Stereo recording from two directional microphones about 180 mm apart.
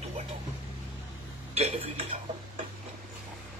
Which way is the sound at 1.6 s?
35° right (ahead or behind).